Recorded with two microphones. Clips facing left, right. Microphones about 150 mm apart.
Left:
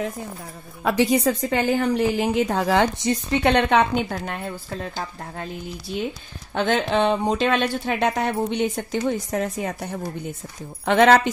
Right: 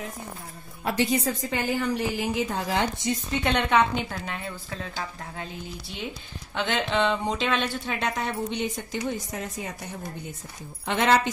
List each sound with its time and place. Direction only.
0.8 s a woman's voice: 90° left; by 3.8 s 65° left (ahead or behind)
4.1 s speech: 45° left (ahead or behind)
6.5 s speech: 45° left (ahead or behind)
7.8 s speech: 60° left (ahead or behind)